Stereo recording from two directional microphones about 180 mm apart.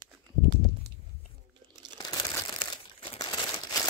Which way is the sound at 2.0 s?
20° left (ahead or behind).